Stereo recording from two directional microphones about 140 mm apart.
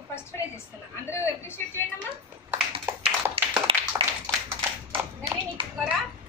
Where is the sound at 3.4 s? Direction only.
40° right (ahead or behind).